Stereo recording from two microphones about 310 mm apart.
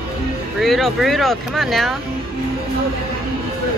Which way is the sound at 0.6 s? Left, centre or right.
Centre.